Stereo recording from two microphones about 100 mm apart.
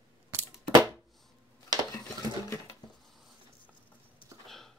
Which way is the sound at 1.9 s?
35° left (ahead or behind).